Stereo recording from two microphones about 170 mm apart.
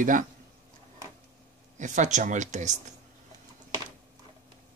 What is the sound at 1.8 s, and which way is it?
Speech, 45° right (ahead or behind).